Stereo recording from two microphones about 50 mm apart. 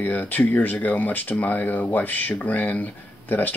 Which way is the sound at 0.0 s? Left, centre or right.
Left.